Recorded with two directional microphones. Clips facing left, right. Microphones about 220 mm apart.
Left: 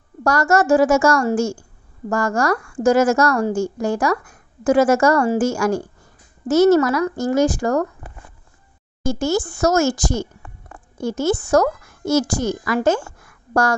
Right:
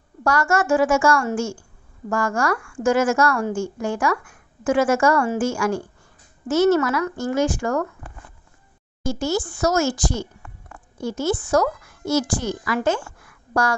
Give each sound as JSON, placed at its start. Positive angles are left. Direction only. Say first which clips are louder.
{"t": 0.2, "sound": "a woman's voice", "louder": "left 4 dB", "side_deg": 40}
{"t": 9.0, "sound": "a woman's voice", "louder": "left 3 dB", "side_deg": 50}